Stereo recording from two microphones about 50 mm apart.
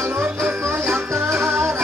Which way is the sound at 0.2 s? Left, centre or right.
Right.